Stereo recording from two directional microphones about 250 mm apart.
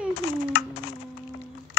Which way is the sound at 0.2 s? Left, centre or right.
Left.